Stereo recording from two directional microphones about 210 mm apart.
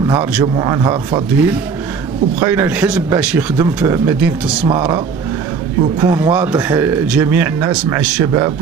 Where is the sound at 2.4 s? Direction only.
10° right (ahead or behind).